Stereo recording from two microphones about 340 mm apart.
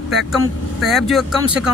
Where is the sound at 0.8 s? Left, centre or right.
Centre.